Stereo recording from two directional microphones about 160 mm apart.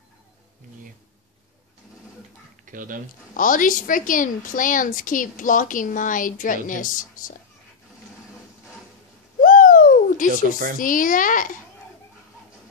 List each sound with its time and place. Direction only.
2.6 s speech: 55° right (ahead or behind)
3.3 s a woman's voice: 55° left (ahead or behind)
9.4 s a sound: 60° left (ahead or behind)
10.8 s a woman's voice: 55° left (ahead or behind)